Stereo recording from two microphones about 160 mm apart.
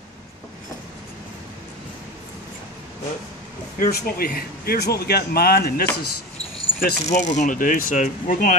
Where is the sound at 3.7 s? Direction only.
65° left (ahead or behind).